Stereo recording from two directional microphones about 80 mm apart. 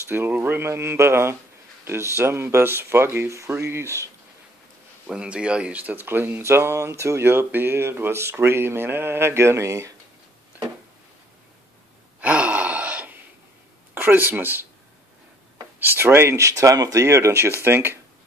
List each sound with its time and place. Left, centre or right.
0.1 s speech: right
5.0 s speech: centre; by 9.9 s right
12.2 s gasp: centre
13.9 s speech: right
15.8 s speech: right